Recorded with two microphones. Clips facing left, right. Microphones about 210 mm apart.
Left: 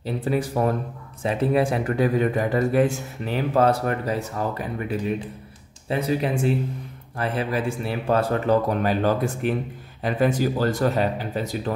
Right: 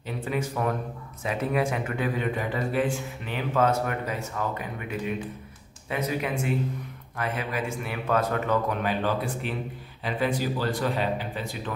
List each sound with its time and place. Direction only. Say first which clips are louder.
0.0 s a man's voice: left 5 dB; 35° left (ahead or behind)